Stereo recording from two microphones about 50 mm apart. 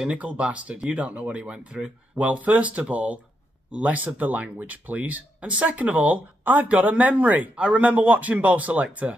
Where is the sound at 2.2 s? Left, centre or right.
Right.